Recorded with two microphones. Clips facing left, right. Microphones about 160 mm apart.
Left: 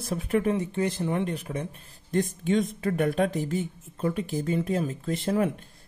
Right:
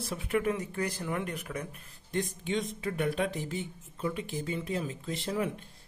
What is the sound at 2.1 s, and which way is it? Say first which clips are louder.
Speech: left 7 dB; 45° left (ahead or behind).